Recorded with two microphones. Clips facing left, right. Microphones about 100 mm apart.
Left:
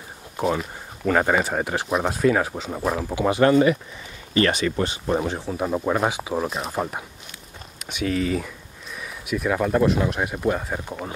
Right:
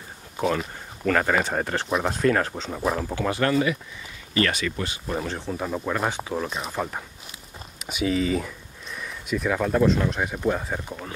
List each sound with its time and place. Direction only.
0.4 s speech: centre (ahead or behind)
1.0 s speech: 15° left (ahead or behind)
1.3 s speech: 5° left (ahead or behind)
3.3 s speech: 20° left (ahead or behind)
5.4 s speech: 5° left (ahead or behind)
5.7 s speech: 15° left (ahead or behind)
7.8 s speech: centre (ahead or behind)